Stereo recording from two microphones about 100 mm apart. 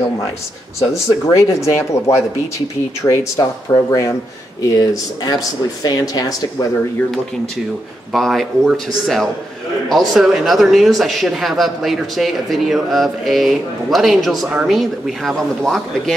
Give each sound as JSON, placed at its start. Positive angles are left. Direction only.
{"t": 0.7, "sound": "speech", "side_deg": 30}
{"t": 8.1, "sound": "a man's voice", "side_deg": 0}